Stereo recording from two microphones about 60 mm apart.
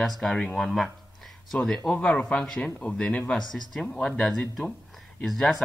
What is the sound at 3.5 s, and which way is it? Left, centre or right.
Speech, centre.